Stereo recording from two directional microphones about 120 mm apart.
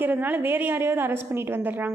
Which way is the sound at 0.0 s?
15° right (ahead or behind).